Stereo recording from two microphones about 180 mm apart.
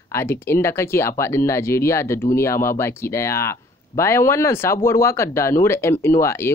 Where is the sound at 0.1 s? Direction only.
15° left (ahead or behind).